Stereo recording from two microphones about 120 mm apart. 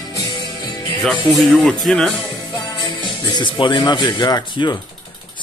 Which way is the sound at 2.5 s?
35° left (ahead or behind).